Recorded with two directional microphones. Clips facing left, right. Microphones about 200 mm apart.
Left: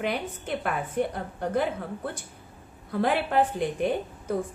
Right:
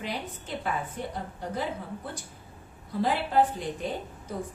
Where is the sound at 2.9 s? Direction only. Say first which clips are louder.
Left 2 dB; 60° left (ahead or behind).